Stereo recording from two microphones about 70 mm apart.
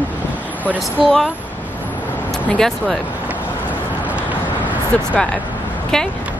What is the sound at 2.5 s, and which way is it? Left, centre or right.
Speech, centre.